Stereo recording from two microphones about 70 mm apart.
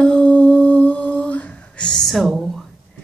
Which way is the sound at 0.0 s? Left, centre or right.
Centre.